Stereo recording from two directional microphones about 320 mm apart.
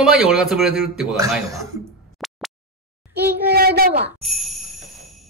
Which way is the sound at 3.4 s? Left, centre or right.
Right.